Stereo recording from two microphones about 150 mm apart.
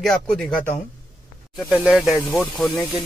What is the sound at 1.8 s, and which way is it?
Speech, centre (ahead or behind).